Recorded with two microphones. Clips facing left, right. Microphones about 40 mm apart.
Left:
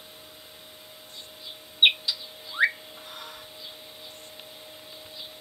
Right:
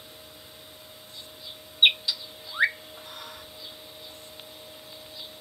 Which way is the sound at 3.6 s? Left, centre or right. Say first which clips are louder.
Even; centre.